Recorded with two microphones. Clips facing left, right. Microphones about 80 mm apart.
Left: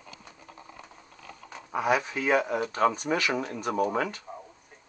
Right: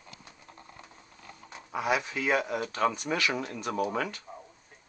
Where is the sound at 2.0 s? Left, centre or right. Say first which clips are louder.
Left 3 dB; left.